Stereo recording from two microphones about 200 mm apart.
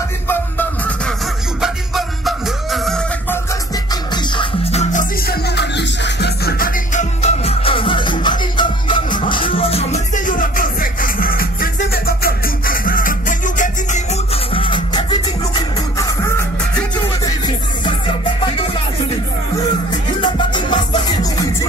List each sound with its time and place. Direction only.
0.3 s music: 10° left (ahead or behind)
3.9 s music: 25° left (ahead or behind)
5.2 s music: 55° left (ahead or behind); by 17.4 s 20° left (ahead or behind)
20.2 s music: 25° left (ahead or behind)